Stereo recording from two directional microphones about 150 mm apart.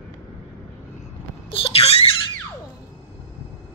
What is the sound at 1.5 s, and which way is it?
Squeal, 40° left (ahead or behind).